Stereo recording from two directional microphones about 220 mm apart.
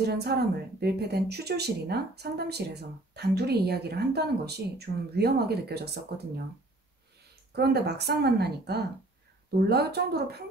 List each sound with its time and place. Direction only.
0.0 s a woman's voice: 50° right (ahead or behind)
7.5 s a woman's voice: 50° right (ahead or behind)